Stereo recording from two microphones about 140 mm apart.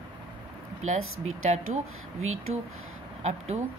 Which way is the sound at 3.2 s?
50° right (ahead or behind).